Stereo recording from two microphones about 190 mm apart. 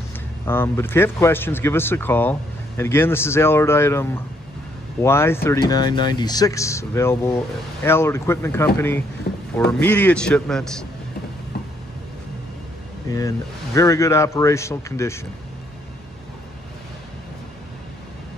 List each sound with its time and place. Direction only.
0.5 s speech: 10° left (ahead or behind)
9.3 s a sound: 45° left (ahead or behind)
9.7 s speech: 10° left (ahead or behind)
13.7 s speech: 15° left (ahead or behind)